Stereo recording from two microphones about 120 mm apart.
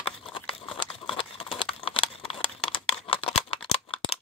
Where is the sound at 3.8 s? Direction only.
45° left (ahead or behind).